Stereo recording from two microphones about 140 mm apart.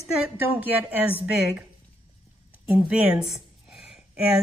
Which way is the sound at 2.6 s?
10° right (ahead or behind).